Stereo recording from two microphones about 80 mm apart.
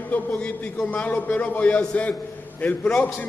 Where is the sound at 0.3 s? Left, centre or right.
Centre.